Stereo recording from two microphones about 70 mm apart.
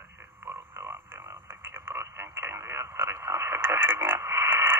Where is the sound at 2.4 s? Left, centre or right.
Right.